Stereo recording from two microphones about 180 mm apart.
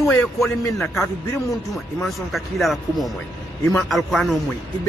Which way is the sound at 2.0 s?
Centre (ahead or behind).